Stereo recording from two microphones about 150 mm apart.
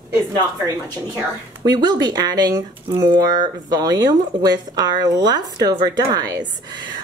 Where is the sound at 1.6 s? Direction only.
30° right (ahead or behind).